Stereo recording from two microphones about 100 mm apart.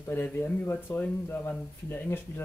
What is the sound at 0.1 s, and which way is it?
Speech, 20° left (ahead or behind).